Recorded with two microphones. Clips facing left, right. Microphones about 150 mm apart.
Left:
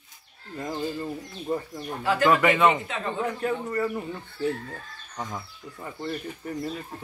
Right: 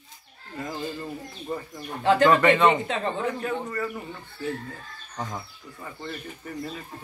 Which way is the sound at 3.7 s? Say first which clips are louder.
Left 4 dB; 20° left (ahead or behind).